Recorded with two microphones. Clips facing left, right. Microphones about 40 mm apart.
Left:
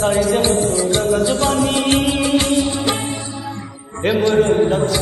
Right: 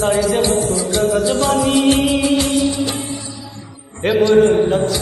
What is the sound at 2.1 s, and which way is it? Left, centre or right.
Music, left.